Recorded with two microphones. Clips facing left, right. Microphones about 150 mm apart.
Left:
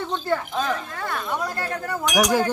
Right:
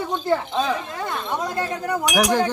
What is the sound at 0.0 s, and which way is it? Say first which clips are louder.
Speech: right 3 dB; 15° right (ahead or behind).